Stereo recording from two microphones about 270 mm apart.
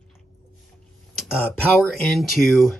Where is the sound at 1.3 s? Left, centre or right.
Centre.